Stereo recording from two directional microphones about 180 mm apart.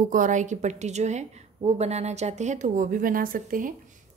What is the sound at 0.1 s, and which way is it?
A woman's voice, 45° right (ahead or behind).